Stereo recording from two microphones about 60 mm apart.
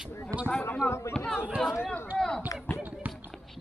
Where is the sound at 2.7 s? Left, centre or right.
Left.